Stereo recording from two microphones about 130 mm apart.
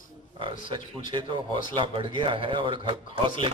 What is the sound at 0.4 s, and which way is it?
Speech, 40° right (ahead or behind).